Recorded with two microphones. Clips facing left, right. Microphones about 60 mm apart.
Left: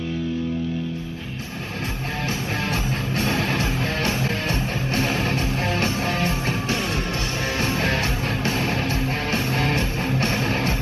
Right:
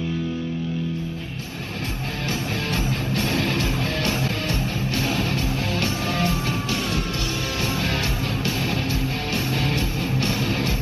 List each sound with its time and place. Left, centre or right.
1.8 s music: left